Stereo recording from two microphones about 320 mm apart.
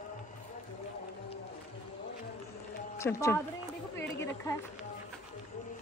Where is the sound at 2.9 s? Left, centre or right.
Centre.